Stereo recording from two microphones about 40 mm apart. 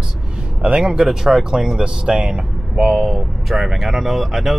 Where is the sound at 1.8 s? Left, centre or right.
Right.